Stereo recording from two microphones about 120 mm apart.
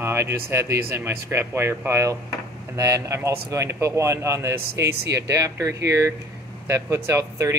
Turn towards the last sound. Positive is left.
turn(degrees=-25)  # may be behind; listen again after turning